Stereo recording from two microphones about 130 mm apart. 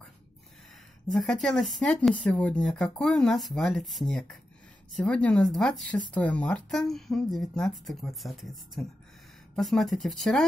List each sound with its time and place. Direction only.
1.0 s speech: 5° left (ahead or behind)